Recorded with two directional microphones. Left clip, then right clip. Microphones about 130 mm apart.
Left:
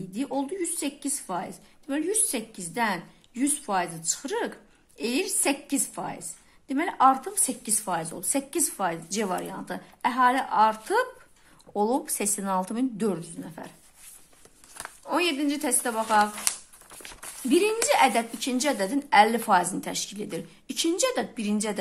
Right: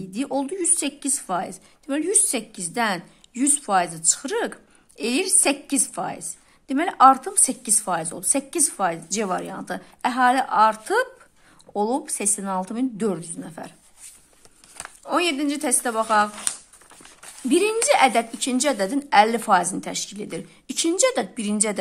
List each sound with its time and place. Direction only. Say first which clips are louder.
0.1 s a woman's voice: right 4 dB; 45° right (ahead or behind)
11.7 s a woman's voice: right 2 dB; 15° right (ahead or behind); by 13.7 s 40° right (ahead or behind)
15.0 s a woman's voice: right 3 dB; 35° right (ahead or behind)
17.5 s a woman's voice: right 4 dB; 35° right (ahead or behind)